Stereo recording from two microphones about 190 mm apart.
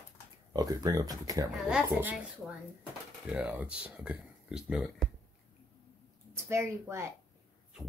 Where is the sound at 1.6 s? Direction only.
5° right (ahead or behind).